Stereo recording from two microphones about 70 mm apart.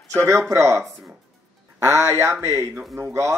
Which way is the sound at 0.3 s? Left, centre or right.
Right.